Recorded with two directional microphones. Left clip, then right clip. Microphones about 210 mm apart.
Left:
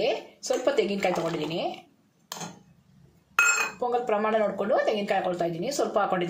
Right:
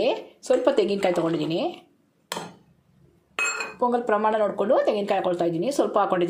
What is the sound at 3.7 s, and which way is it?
Speech, 30° right (ahead or behind).